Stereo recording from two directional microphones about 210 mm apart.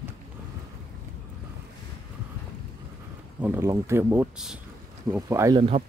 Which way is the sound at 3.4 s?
10° right (ahead or behind).